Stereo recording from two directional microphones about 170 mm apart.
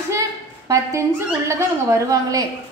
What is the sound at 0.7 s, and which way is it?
A woman's voice, 15° right (ahead or behind).